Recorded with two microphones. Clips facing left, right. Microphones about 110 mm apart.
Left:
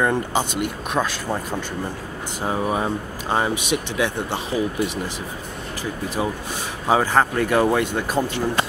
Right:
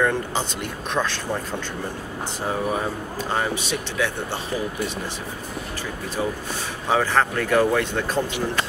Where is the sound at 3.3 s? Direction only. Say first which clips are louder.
Left 4 dB; 15° left (ahead or behind).